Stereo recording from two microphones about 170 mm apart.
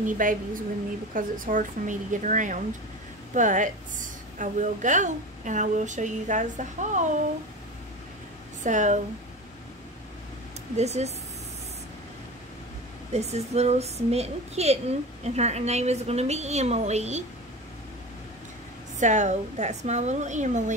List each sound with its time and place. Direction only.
0.0 s a woman's voice: 50° right (ahead or behind)
8.6 s a woman's voice: 45° right (ahead or behind)
10.8 s a woman's voice: 40° right (ahead or behind)
13.1 s a woman's voice: 40° right (ahead or behind)
18.9 s a woman's voice: 45° right (ahead or behind)